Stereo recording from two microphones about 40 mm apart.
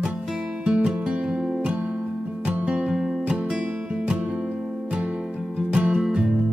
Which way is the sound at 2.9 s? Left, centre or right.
Centre.